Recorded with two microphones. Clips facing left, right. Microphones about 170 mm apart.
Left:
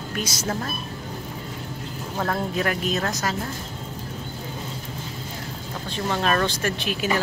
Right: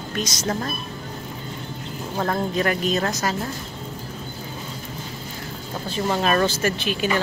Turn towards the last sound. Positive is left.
turn(degrees=0)  # may be behind; listen again after turning